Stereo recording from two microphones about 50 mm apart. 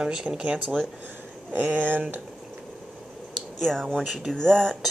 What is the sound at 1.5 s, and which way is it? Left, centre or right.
Speech, right.